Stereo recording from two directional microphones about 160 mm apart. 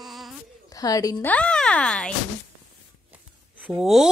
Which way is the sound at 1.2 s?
5° left (ahead or behind).